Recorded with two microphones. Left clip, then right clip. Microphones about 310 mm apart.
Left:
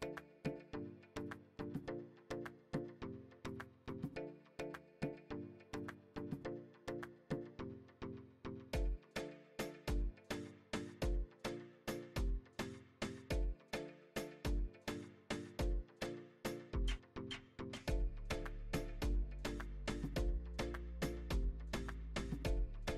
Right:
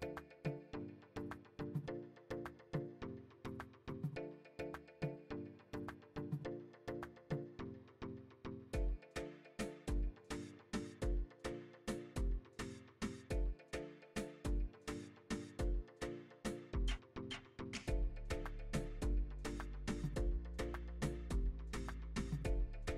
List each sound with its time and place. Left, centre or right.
0.0 s music: centre
22.1 s music: centre